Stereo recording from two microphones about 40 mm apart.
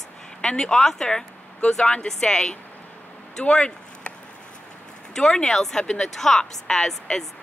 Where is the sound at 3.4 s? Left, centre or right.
Left.